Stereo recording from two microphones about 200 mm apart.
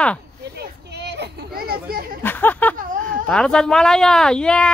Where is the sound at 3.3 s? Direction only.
5° left (ahead or behind).